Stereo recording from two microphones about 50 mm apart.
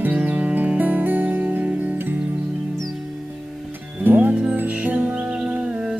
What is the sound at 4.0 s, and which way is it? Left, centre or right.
Music, right.